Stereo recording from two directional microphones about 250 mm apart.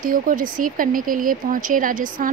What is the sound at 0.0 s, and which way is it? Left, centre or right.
Speech, right.